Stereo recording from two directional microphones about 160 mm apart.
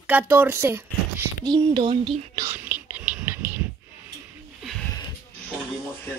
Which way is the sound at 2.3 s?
15° right (ahead or behind).